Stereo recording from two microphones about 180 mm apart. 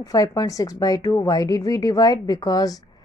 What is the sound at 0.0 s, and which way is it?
A woman's voice, 20° left (ahead or behind).